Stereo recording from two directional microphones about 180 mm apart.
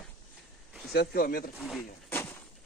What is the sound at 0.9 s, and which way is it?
Speech, 60° left (ahead or behind).